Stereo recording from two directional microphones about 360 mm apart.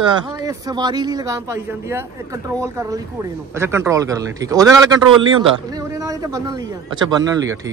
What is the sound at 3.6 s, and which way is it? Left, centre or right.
Speech, centre.